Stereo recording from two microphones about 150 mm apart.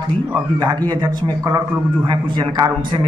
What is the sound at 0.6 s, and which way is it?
A man's voice, 30° right (ahead or behind).